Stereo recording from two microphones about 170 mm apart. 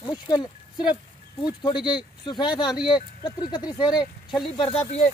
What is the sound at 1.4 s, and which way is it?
Speech, 25° left (ahead or behind).